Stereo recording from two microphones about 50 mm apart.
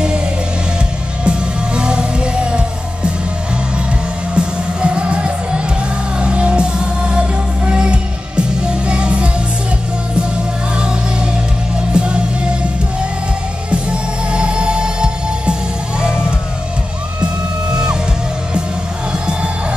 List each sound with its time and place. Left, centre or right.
1.2 s music: centre
4.4 s music: right
11.9 s music: centre
13.7 s music: right
16.0 s vehicle: centre